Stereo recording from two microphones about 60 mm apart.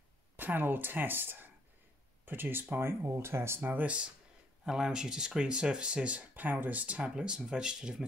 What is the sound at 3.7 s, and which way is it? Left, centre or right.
Speech, right.